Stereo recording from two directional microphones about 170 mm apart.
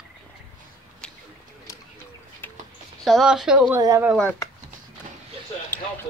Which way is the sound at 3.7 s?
15° right (ahead or behind).